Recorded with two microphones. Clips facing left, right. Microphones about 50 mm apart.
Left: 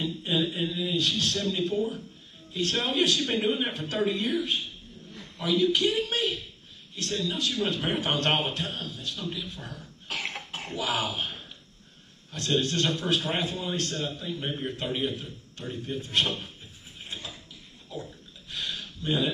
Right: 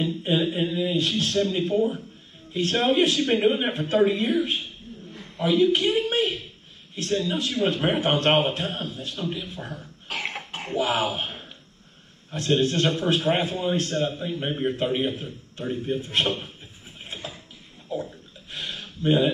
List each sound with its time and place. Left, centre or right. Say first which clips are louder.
0.0 s a man's voice: right 4 dB; right
10.3 s cough: right 3 dB; centre
10.7 s a man's voice: right 6 dB; right
17.0 s a sound: right 3 dB; right